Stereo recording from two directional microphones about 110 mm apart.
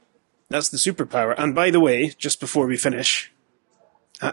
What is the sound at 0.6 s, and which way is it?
A man's voice, 10° right (ahead or behind).